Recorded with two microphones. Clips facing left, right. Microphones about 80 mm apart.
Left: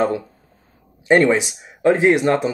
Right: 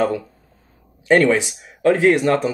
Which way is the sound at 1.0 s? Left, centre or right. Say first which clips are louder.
Even; centre.